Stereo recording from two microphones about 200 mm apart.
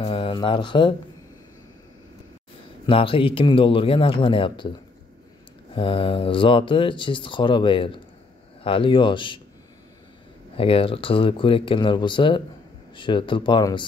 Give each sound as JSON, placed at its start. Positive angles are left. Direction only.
{"t": 0.0, "sound": "speech", "side_deg": 25}
{"t": 2.9, "sound": "speech", "side_deg": 25}
{"t": 5.8, "sound": "speech", "side_deg": 25}
{"t": 10.6, "sound": "speech", "side_deg": 25}